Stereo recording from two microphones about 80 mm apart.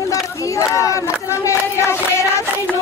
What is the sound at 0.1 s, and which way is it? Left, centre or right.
Crowd, left.